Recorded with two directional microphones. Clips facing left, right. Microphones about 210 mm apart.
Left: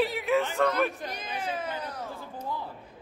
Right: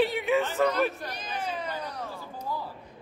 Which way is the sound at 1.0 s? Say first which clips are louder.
Even; 15° left (ahead or behind).